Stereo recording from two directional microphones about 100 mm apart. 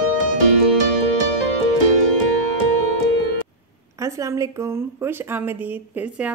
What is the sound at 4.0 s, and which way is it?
A woman's voice, 30° right (ahead or behind).